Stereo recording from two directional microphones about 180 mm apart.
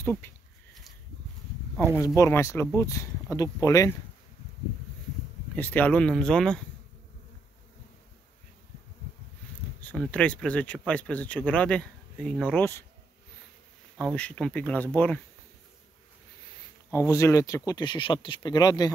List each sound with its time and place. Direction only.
0.0 s speech: 10° left (ahead or behind)
2.0 s speech: 15° left (ahead or behind)
5.6 s speech: 10° left (ahead or behind)
9.8 s speech: 5° left (ahead or behind)
13.9 s speech: 5° left (ahead or behind)
16.9 s speech: 15° left (ahead or behind)